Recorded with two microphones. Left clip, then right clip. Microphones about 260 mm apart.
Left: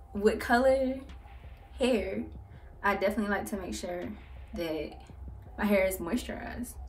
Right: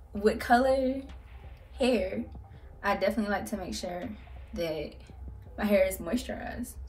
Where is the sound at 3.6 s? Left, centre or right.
Centre.